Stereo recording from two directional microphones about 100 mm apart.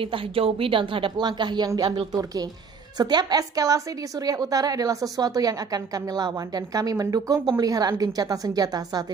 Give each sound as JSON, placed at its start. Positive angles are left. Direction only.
{"t": 0.0, "sound": "a woman's voice", "side_deg": -65}
{"t": 3.0, "sound": "a woman's voice", "side_deg": -45}